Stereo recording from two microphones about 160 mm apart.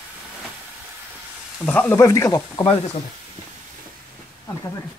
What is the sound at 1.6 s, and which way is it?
Speech, 10° left (ahead or behind).